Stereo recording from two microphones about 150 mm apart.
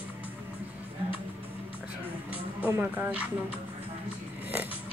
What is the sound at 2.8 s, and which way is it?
Speech, 10° right (ahead or behind).